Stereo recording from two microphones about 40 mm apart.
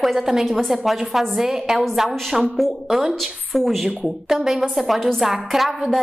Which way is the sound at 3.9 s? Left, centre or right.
Centre.